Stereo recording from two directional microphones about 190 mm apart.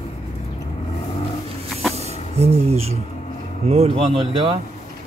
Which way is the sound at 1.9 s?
35° right (ahead or behind).